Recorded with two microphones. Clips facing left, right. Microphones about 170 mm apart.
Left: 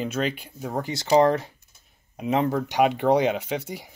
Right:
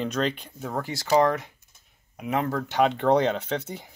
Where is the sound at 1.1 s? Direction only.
30° left (ahead or behind); by 3.9 s 10° left (ahead or behind).